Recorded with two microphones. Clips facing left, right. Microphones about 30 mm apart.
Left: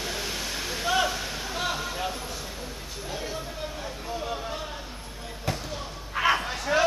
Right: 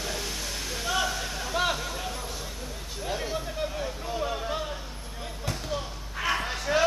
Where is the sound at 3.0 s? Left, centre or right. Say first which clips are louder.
Right 3 dB; centre.